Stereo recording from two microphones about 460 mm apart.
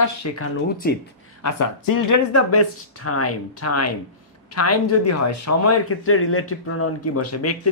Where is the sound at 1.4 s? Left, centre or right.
Left.